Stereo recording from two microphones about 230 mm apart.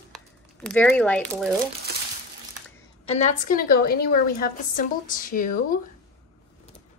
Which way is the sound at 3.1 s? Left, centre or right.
Left.